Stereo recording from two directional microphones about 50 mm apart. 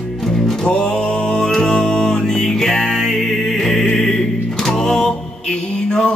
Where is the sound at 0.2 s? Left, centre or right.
Centre.